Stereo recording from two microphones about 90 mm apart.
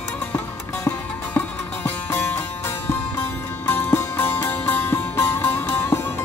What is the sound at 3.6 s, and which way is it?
Music, 25° left (ahead or behind).